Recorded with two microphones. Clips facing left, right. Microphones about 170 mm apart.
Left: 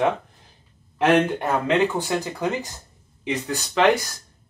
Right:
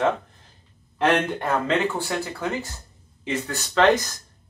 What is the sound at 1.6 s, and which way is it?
Speech, 15° left (ahead or behind).